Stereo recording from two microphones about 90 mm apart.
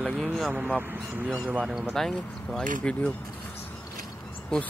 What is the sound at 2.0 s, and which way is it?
Mantra, 5° left (ahead or behind).